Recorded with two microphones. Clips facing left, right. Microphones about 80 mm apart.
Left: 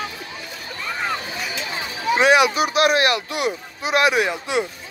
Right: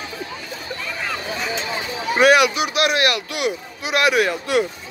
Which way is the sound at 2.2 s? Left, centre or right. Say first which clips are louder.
Right 2 dB; left.